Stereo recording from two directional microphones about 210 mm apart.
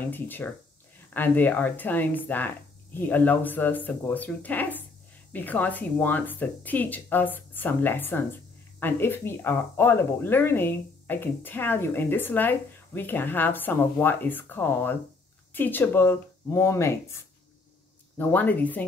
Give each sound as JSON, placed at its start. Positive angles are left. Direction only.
{"t": 0.1, "sound": "speech", "side_deg": 10}